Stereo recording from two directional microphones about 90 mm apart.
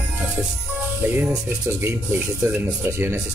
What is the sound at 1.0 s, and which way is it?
Speech, 20° right (ahead or behind).